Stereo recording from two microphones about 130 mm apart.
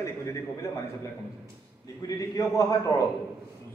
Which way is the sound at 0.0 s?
20° left (ahead or behind).